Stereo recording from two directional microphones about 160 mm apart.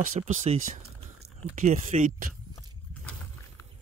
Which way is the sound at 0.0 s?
50° right (ahead or behind).